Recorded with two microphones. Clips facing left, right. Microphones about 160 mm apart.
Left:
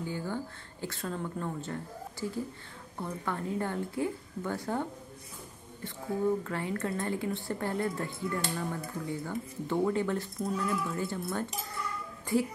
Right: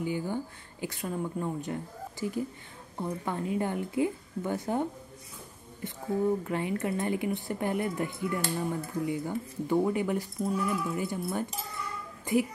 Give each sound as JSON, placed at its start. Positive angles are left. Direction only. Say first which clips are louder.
{"t": 0.0, "sound": "speech", "louder": "right 3 dB", "side_deg": -15}
{"t": 6.4, "sound": "speech", "louder": "right 3 dB", "side_deg": -15}